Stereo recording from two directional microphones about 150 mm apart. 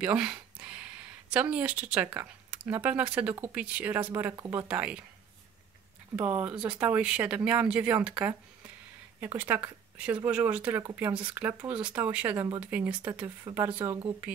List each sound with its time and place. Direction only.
0.0 s a sound: 10° right (ahead or behind)
2.1 s speech: 10° right (ahead or behind)
4.6 s speech: 5° right (ahead or behind)
6.1 s speech: 10° right (ahead or behind)
13.4 s speech: 25° right (ahead or behind)
13.7 s speech: 15° right (ahead or behind)